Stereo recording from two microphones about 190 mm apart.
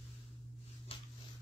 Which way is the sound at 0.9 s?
30° left (ahead or behind).